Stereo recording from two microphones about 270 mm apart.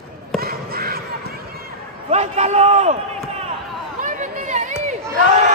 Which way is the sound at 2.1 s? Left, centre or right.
Right.